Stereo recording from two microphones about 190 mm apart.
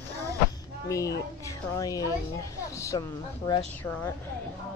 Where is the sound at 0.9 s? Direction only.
15° left (ahead or behind).